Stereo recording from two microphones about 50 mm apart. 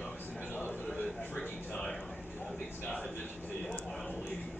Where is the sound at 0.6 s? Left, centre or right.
Left.